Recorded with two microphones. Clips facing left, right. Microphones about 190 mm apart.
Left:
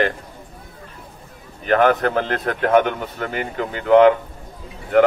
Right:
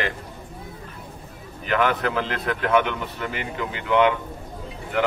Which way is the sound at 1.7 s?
45° left (ahead or behind).